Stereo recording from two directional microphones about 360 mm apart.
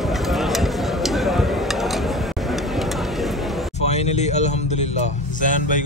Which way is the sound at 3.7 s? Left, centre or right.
Centre.